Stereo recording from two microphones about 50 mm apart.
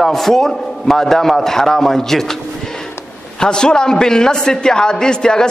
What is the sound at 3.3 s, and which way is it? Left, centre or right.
A man's voice, centre.